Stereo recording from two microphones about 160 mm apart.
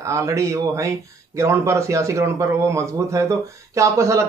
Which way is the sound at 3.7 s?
20° right (ahead or behind).